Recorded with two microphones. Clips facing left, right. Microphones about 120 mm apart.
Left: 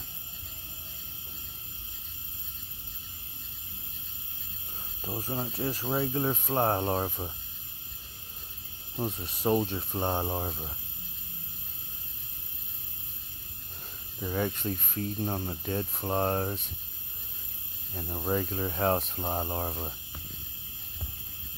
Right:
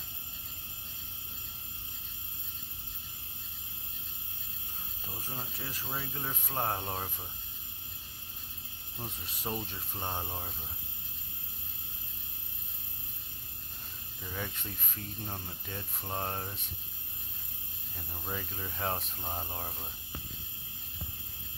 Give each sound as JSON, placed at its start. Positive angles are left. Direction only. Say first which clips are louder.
{"t": 5.3, "sound": "speech", "louder": "left 11 dB", "side_deg": 45}
{"t": 9.0, "sound": "speech", "louder": "left 10 dB", "side_deg": 45}
{"t": 9.5, "sound": "speech", "louder": "left 11 dB", "side_deg": 65}
{"t": 9.8, "sound": "speech", "louder": "left 8 dB", "side_deg": 45}
{"t": 14.2, "sound": "speech", "louder": "left 10 dB", "side_deg": 45}
{"t": 17.9, "sound": "speech", "louder": "left 10 dB", "side_deg": 55}